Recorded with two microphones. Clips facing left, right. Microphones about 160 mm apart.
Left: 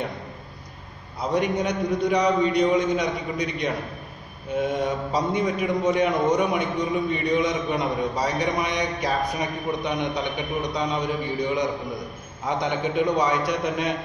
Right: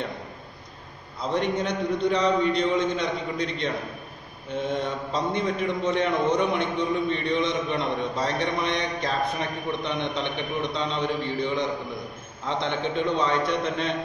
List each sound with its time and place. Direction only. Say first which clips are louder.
1.3 s a man's voice: left 2 dB; 10° left (ahead or behind)